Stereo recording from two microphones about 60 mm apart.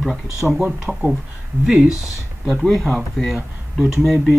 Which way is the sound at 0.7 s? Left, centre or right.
Centre.